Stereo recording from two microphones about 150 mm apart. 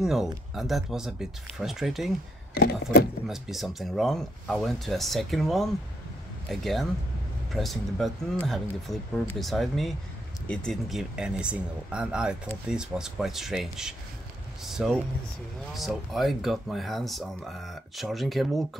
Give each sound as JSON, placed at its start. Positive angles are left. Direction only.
{"t": 0.0, "sound": "speech", "side_deg": -5}
{"t": 2.5, "sound": "a sound", "side_deg": 90}
{"t": 3.3, "sound": "speech", "side_deg": 0}